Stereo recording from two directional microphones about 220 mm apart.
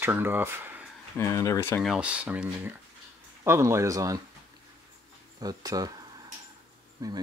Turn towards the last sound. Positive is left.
turn(degrees=-15)  # may be behind; listen again after turning